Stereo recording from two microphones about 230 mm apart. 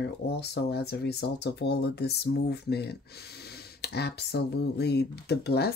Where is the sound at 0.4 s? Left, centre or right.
Left.